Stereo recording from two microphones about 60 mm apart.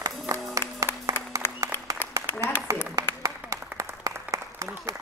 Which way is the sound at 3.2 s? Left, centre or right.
Right.